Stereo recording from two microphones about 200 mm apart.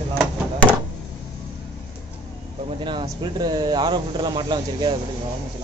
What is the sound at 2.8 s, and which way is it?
Speech, 20° right (ahead or behind).